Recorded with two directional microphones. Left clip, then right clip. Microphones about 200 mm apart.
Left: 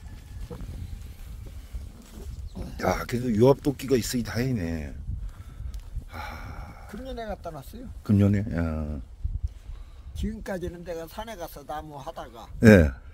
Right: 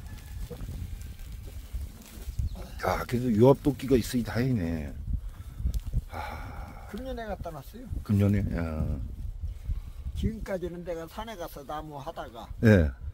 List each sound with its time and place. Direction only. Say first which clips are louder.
0.5 s a sound: left 2 dB; centre (ahead or behind)
2.8 s speech: left 2 dB; 25° left (ahead or behind)
6.1 s a sound: even; 25° left (ahead or behind)
7.1 s speech: left 2 dB; 35° left (ahead or behind)
8.0 s speech: left 4 dB; 20° left (ahead or behind)
10.1 s speech: even; 45° left (ahead or behind); by 12.4 s 20° left (ahead or behind)
12.5 s speech: left 6 dB; 45° left (ahead or behind)